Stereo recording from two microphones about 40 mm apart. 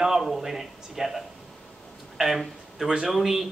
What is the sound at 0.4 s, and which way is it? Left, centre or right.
Speech, centre.